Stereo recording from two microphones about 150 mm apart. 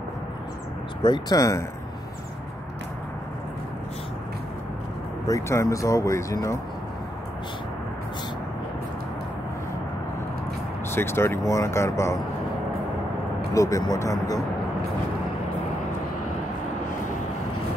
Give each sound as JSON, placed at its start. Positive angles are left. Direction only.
{"t": 1.0, "sound": "speech", "side_deg": 25}
{"t": 5.3, "sound": "speech", "side_deg": 20}
{"t": 10.9, "sound": "speech", "side_deg": 15}
{"t": 13.5, "sound": "speech", "side_deg": 20}